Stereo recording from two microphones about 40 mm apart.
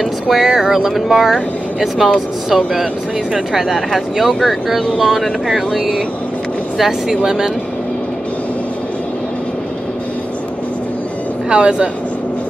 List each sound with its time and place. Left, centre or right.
0.0 s speech: centre
6.8 s speech: centre
11.4 s speech: right